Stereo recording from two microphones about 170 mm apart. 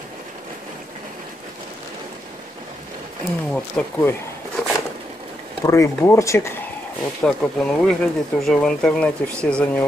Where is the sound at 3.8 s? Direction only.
5° left (ahead or behind).